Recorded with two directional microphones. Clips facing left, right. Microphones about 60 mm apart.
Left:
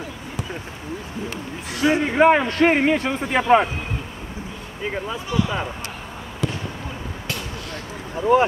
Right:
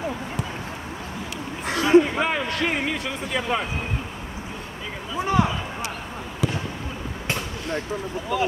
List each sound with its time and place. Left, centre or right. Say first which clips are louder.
1.8 s a man's voice: even; left
5.2 s speech: right 5 dB; right
6.4 s fireworks: even; centre
8.3 s a man's voice: left 8 dB; left